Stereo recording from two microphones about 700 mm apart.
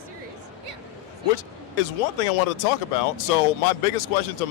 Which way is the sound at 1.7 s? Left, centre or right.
Left.